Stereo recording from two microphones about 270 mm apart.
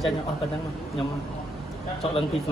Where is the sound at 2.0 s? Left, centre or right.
Left.